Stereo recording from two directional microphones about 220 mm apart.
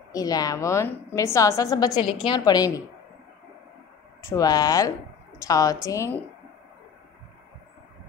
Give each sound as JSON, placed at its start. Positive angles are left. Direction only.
{"t": 0.1, "sound": "a woman's voice", "side_deg": 15}
{"t": 4.3, "sound": "a woman's voice", "side_deg": 15}